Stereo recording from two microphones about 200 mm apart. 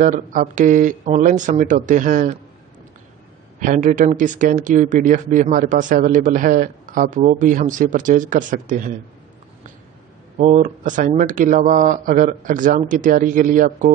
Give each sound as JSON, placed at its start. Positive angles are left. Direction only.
{"t": 0.0, "sound": "speech", "side_deg": -40}
{"t": 3.5, "sound": "speech", "side_deg": -40}
{"t": 10.3, "sound": "speech", "side_deg": -35}